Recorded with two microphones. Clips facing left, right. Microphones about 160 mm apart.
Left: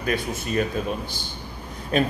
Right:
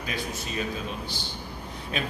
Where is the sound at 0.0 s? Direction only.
55° left (ahead or behind).